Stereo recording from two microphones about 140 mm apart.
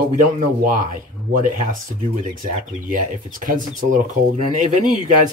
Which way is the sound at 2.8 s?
70° right (ahead or behind).